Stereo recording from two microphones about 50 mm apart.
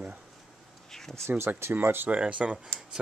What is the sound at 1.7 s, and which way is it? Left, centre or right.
Speech, right.